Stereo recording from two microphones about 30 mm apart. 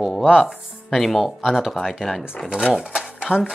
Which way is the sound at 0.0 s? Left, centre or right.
Centre.